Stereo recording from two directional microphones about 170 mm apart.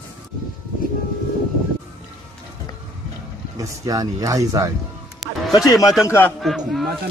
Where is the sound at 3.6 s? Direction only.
20° right (ahead or behind).